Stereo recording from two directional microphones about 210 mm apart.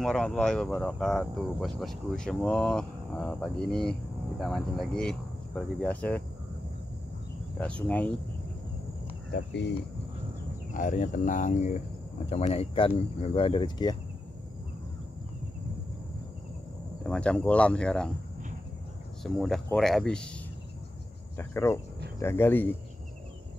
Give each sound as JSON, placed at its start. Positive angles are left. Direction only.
{"t": 0.0, "sound": "speech", "side_deg": 5}
{"t": 7.5, "sound": "speech", "side_deg": 5}
{"t": 9.3, "sound": "speech", "side_deg": 55}
{"t": 10.7, "sound": "speech", "side_deg": 40}
{"t": 17.0, "sound": "speech", "side_deg": 5}
{"t": 19.2, "sound": "speech", "side_deg": 0}
{"t": 21.4, "sound": "speech", "side_deg": 10}